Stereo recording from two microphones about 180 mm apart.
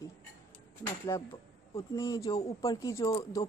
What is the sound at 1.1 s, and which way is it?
Speech, 15° left (ahead or behind).